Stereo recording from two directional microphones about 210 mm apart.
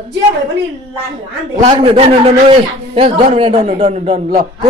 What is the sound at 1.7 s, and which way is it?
A man's voice, 25° right (ahead or behind).